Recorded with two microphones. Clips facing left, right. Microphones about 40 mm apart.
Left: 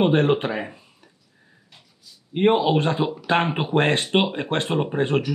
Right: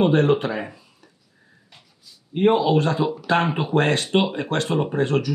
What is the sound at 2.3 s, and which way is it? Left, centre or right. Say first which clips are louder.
Speech: right 1 dB; left.